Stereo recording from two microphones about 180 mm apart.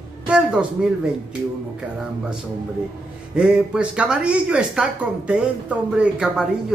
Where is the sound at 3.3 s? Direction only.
5° right (ahead or behind).